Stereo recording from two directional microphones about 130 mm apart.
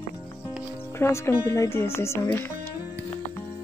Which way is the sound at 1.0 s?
20° left (ahead or behind).